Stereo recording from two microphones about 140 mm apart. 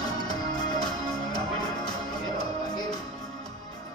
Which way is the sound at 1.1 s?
30° left (ahead or behind).